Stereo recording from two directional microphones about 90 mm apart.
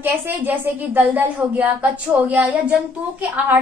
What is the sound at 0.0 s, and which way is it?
A woman's voice, 20° right (ahead or behind).